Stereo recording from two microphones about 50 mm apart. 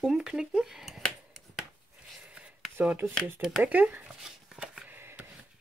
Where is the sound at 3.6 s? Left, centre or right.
Right.